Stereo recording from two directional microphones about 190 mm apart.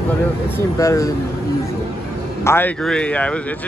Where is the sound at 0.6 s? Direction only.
15° left (ahead or behind).